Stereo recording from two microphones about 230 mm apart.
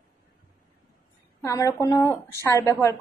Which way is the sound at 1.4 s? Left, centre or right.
Centre.